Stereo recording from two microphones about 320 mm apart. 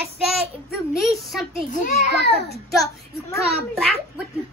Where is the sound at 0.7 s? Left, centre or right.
Centre.